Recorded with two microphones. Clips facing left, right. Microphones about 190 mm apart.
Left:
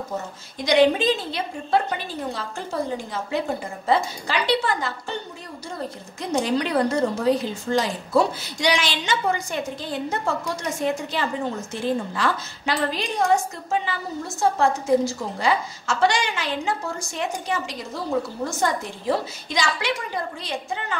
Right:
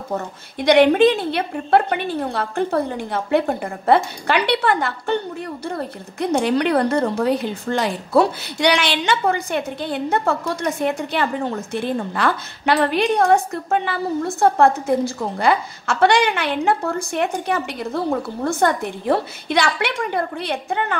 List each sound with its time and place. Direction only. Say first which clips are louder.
0.6 s a woman's voice: right 5 dB; 60° right (ahead or behind)